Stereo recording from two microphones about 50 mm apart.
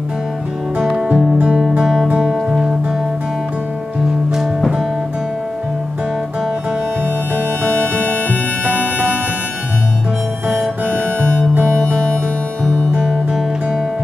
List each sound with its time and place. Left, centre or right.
1.0 s music: right
1.8 s music: centre
11.9 s music: centre